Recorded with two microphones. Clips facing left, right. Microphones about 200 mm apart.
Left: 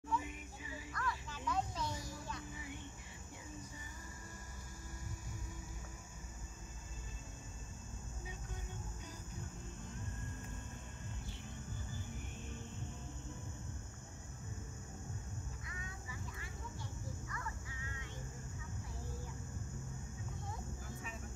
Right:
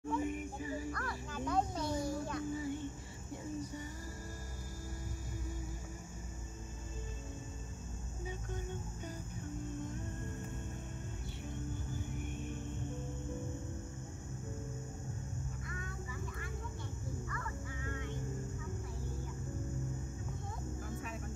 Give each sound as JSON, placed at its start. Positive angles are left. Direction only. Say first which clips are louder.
{"t": 0.1, "sound": "music", "louder": "right 6 dB", "side_deg": -50}
{"t": 15.6, "sound": "vehicle", "louder": "right 6 dB", "side_deg": -55}
{"t": 17.8, "sound": "vehicle", "louder": "right 10 dB", "side_deg": -55}